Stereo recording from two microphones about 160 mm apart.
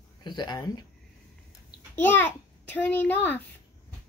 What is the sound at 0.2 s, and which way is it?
Speech, 25° left (ahead or behind).